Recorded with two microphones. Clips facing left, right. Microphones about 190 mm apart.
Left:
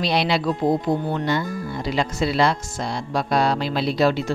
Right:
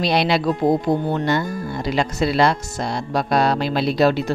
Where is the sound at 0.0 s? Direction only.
50° right (ahead or behind).